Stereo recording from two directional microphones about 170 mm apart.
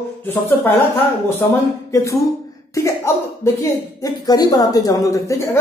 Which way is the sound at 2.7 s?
15° left (ahead or behind).